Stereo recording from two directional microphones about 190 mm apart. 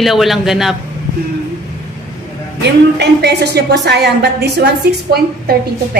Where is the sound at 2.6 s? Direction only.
60° right (ahead or behind).